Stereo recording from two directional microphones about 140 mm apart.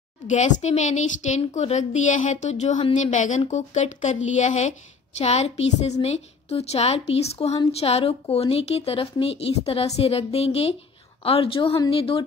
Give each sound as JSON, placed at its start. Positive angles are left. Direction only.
{"t": 0.3, "sound": "a woman's voice", "side_deg": 55}